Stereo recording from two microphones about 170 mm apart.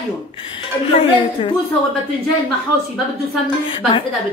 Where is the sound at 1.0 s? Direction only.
30° left (ahead or behind).